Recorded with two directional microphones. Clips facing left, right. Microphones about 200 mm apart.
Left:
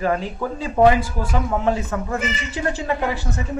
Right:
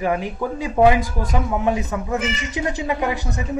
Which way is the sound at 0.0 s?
10° right (ahead or behind).